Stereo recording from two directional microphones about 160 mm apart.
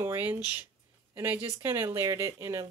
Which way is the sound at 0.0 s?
15° right (ahead or behind).